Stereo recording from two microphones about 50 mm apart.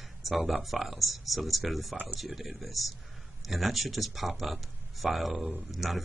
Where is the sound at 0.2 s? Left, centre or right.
Centre.